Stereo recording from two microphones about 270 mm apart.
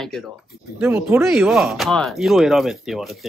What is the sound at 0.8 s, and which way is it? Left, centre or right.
Speech, centre.